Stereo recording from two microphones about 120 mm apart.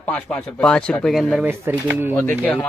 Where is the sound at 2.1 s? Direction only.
15° left (ahead or behind).